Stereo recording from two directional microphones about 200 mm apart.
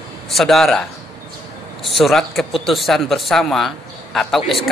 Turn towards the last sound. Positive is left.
turn(degrees=0)  # may be behind; listen again after turning